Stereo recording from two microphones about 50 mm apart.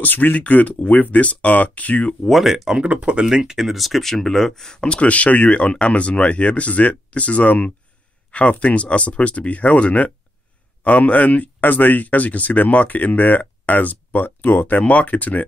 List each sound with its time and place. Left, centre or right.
0.0 s speech: left
2.2 s speech: centre
2.9 s speech: right
3.3 s speech: centre; by 15.4 s left